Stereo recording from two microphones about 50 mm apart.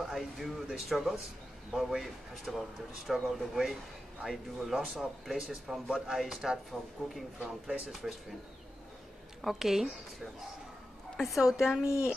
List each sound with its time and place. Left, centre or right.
0.0 s speech: centre
9.4 s speech: centre
11.8 s speech: left